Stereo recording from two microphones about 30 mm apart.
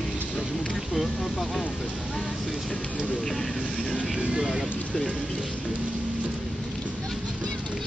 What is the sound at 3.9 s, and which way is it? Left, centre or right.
Speech, right.